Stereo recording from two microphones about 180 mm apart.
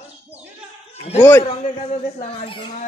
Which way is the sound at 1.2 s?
15° left (ahead or behind).